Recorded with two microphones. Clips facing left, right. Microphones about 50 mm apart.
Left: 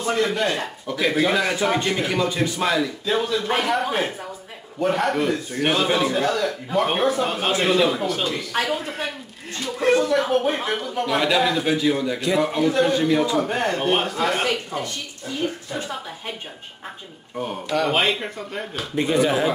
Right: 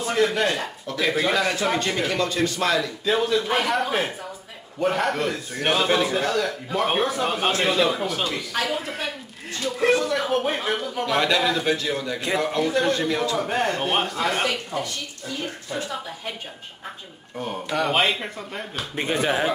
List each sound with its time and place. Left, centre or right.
0.1 s a man's voice: centre
10.0 s a man's voice: centre
17.6 s a man's voice: centre
18.9 s speech: right